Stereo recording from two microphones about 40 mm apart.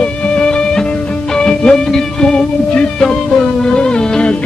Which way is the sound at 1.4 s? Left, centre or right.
Centre.